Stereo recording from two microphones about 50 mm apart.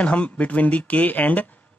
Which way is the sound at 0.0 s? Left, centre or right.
Left.